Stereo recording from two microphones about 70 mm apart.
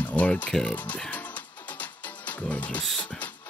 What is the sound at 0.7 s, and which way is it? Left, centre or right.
Speech, left.